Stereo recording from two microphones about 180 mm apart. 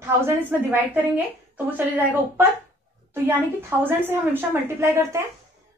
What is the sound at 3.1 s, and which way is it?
A woman's voice, 15° right (ahead or behind).